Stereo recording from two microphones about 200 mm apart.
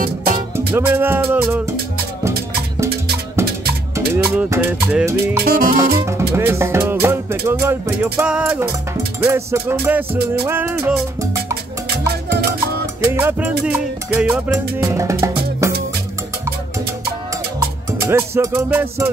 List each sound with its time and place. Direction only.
0.7 s music: 10° right (ahead or behind)
3.4 s music: 15° right (ahead or behind)
5.4 s music: 45° right (ahead or behind)
6.0 s music: 15° right (ahead or behind)
13.0 s music: 10° right (ahead or behind)
17.6 s music: 10° right (ahead or behind)